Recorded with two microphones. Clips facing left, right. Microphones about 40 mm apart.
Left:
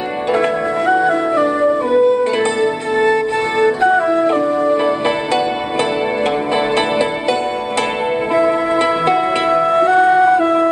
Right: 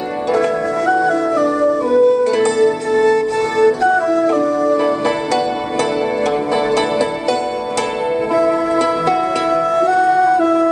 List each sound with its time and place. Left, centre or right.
0.3 s music: left